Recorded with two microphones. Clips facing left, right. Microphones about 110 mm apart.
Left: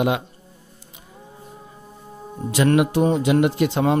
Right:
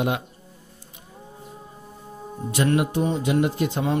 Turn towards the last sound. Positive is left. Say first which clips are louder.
# left 5 dB
turn(degrees=70)  # may be behind; listen again after turning